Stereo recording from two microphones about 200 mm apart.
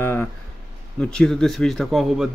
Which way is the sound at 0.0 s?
10° left (ahead or behind).